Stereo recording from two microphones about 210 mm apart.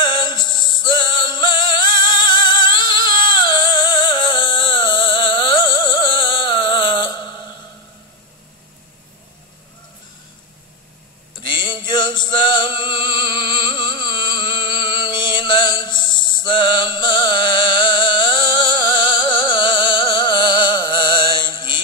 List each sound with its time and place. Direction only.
0.0 s music: 20° left (ahead or behind)
11.3 s music: 20° left (ahead or behind)